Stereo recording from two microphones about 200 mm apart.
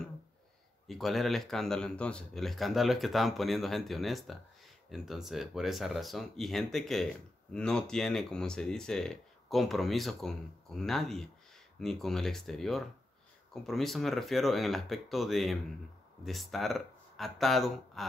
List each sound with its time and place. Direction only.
0.8 s speech: centre (ahead or behind)